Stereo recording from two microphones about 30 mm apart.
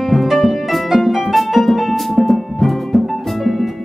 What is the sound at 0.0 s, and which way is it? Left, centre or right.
Music, centre.